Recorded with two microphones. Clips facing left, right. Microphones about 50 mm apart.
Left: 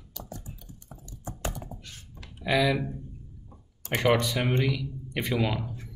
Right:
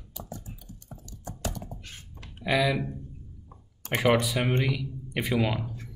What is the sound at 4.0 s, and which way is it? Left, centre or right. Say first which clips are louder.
Speech: right 1 dB; centre.